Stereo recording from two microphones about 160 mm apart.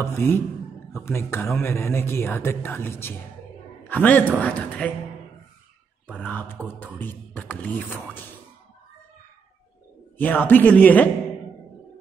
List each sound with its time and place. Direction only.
0.0 s a man's voice: 15° left (ahead or behind)
6.1 s speech: 10° left (ahead or behind)
10.1 s speech: 10° left (ahead or behind)